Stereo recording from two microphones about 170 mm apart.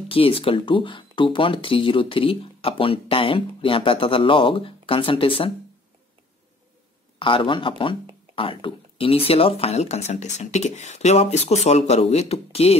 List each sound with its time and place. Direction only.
0.1 s speech: 35° left (ahead or behind)
7.2 s speech: 30° left (ahead or behind)